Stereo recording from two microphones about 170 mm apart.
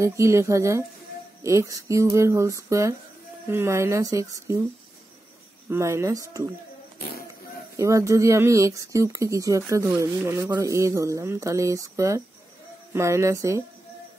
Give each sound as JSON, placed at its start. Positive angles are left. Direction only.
{"t": 0.0, "sound": "speech", "side_deg": -15}
{"t": 5.7, "sound": "speech", "side_deg": -15}
{"t": 7.7, "sound": "speech", "side_deg": -20}